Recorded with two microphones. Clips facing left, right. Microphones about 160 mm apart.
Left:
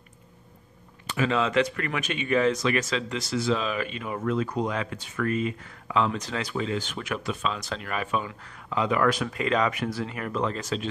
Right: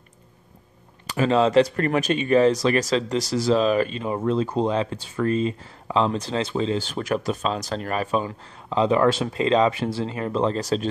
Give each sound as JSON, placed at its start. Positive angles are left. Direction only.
{"t": 1.1, "sound": "speech", "side_deg": -35}